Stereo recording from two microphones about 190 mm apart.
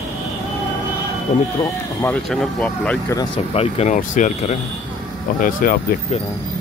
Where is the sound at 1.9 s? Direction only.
10° left (ahead or behind).